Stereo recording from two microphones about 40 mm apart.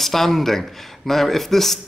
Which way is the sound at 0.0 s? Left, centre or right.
Centre.